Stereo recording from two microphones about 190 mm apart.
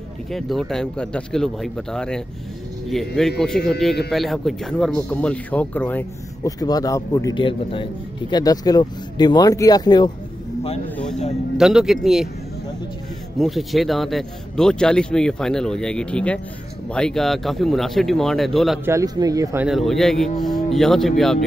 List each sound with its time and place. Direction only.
0.3 s speech: centre (ahead or behind); by 10.1 s 20° left (ahead or behind)
11.5 s speech: centre (ahead or behind)
13.4 s speech: centre (ahead or behind)
18.9 s speech: 20° right (ahead or behind)
19.7 s speech: centre (ahead or behind)